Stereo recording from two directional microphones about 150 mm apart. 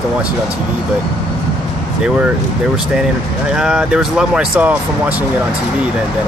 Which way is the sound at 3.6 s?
5° right (ahead or behind).